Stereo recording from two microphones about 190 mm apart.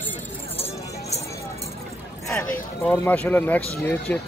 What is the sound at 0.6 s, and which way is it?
Clip-clop, 35° left (ahead or behind).